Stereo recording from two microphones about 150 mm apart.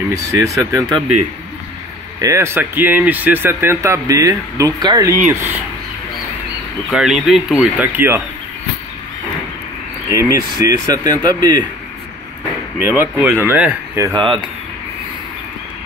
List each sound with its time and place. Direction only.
0.1 s speech: 20° right (ahead or behind)
2.1 s speech: 20° right (ahead or behind)
6.9 s speech: centre (ahead or behind)
10.1 s speech: 20° right (ahead or behind)
12.7 s speech: 10° right (ahead or behind)
14.1 s speech: 5° left (ahead or behind)